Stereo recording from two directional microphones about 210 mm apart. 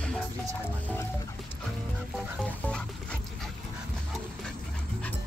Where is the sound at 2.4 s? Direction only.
5° left (ahead or behind).